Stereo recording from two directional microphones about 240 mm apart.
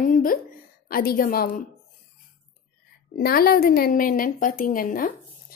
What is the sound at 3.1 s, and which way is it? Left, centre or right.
A woman's voice, left.